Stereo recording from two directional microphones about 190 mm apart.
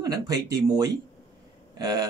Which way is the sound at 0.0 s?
20° right (ahead or behind).